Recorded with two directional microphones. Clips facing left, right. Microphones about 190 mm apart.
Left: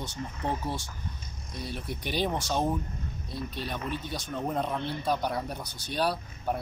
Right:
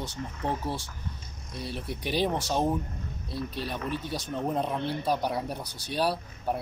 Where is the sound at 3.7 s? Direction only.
5° right (ahead or behind).